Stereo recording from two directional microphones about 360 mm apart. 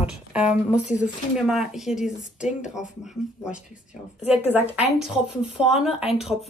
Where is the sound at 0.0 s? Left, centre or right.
Centre.